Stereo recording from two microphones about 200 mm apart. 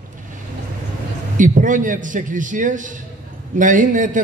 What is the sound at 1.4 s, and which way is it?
A man's voice, 40° right (ahead or behind).